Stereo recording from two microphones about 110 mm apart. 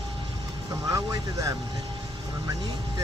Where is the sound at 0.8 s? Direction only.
35° right (ahead or behind).